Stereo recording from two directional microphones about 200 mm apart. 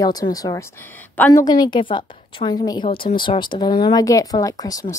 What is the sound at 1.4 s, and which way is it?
A woman's voice, 20° left (ahead or behind).